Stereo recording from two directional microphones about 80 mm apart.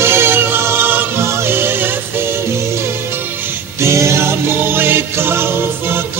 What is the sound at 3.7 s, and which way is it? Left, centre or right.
Music, right.